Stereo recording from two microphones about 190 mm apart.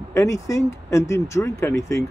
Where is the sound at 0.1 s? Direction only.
15° left (ahead or behind).